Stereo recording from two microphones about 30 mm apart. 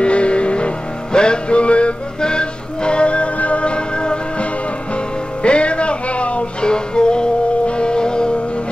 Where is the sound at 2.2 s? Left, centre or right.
Left.